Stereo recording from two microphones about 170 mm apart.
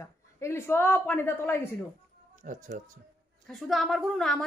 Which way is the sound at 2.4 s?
50° right (ahead or behind).